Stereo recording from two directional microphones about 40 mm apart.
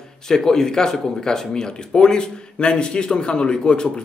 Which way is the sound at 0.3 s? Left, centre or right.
Centre.